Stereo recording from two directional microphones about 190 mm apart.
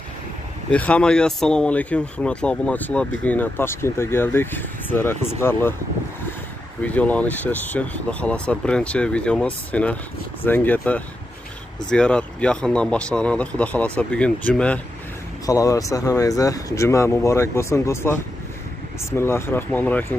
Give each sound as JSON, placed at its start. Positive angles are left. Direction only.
{"t": 0.7, "sound": "a man's voice", "side_deg": 5}
{"t": 6.8, "sound": "a man's voice", "side_deg": 10}
{"t": 15.4, "sound": "speech", "side_deg": 15}